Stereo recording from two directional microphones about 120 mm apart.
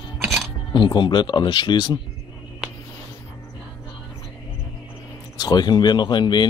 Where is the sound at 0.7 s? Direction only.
40° left (ahead or behind).